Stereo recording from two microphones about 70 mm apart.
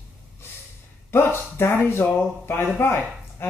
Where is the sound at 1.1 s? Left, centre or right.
Left.